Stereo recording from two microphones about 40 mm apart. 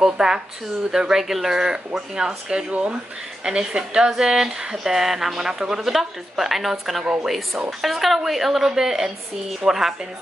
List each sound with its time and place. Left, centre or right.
0.0 s a sound: centre
0.9 s a woman's voice: centre
2.7 s speech: right
3.4 s a woman's voice: centre
5.8 s a woman's voice: centre